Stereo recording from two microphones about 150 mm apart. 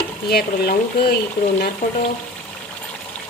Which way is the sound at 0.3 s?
90° left.